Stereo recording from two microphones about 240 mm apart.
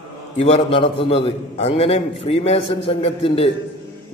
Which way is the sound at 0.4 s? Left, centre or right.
Left.